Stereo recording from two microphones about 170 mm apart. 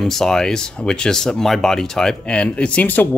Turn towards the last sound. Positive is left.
turn(degrees=10)  # may be behind; listen again after turning